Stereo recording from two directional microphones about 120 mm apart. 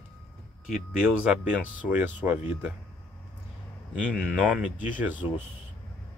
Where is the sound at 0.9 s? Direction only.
10° right (ahead or behind).